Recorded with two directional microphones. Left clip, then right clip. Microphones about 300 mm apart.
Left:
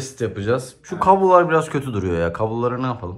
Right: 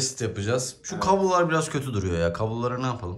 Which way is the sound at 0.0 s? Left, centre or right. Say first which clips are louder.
Left 4 dB; centre.